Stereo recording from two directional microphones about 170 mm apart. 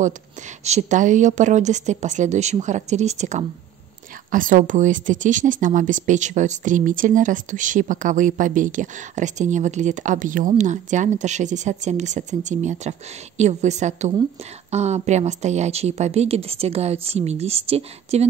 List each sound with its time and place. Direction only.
0.7 s a woman's voice: 45° right (ahead or behind)